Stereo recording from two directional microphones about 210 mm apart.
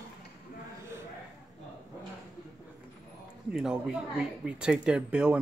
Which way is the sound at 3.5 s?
5° right (ahead or behind).